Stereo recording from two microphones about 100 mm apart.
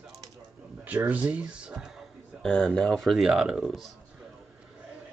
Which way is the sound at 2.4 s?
5° left (ahead or behind).